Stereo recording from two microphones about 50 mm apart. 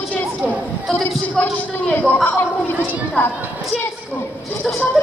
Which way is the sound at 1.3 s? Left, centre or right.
Left.